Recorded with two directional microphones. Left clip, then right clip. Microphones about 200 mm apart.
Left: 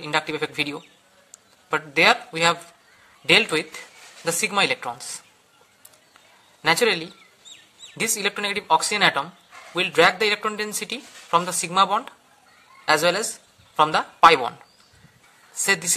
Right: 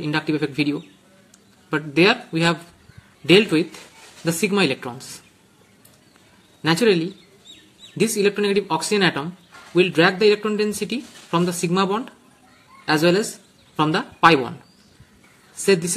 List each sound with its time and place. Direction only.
0.0 s speech: 25° left (ahead or behind)
6.6 s speech: 30° left (ahead or behind)
15.6 s a woman's voice: 30° left (ahead or behind)